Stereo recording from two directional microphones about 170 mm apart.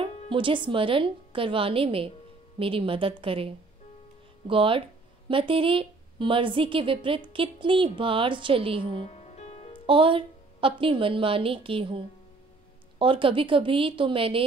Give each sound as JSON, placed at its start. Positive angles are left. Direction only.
{"t": 0.3, "sound": "a woman's voice", "side_deg": -30}
{"t": 9.0, "sound": "music", "side_deg": 40}
{"t": 9.8, "sound": "a woman's voice", "side_deg": -30}
{"t": 13.0, "sound": "a woman's voice", "side_deg": -30}